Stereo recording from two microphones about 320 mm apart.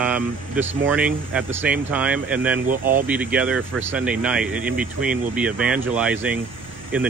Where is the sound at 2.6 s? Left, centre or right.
Right.